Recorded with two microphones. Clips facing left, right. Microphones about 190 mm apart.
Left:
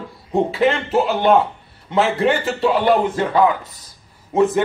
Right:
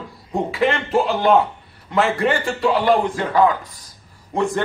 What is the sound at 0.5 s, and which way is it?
A man's voice, centre (ahead or behind).